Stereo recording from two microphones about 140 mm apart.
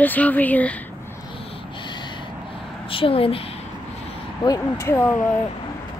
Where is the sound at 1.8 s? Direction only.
35° left (ahead or behind).